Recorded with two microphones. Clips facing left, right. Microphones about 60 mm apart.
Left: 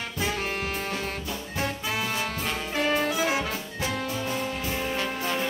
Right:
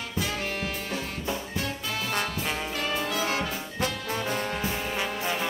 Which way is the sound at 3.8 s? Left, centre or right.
Right.